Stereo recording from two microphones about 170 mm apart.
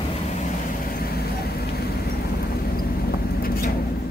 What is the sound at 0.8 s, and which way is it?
Vehicle, 60° left (ahead or behind).